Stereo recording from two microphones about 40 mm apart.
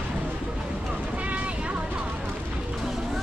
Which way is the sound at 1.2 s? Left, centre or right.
Right.